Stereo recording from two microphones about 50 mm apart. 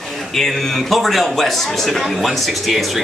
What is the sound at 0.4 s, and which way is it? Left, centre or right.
A woman's voice, centre.